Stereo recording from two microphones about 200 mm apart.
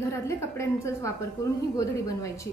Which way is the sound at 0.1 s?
15° left (ahead or behind).